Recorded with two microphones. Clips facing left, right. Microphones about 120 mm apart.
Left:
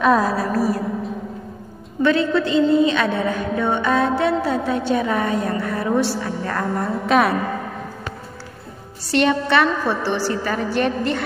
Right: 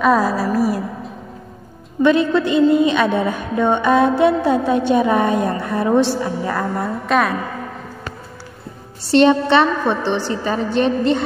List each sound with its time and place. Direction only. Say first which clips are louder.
0.0 s a woman's voice: right 1 dB; centre (ahead or behind)
0.5 s a woman's voice: right 2 dB; 10° right (ahead or behind)
2.0 s a woman's voice: right 3 dB; 15° right (ahead or behind)
6.4 s a woman's voice: right 2 dB; 5° right (ahead or behind)
9.0 s a woman's voice: right 6 dB; 25° right (ahead or behind)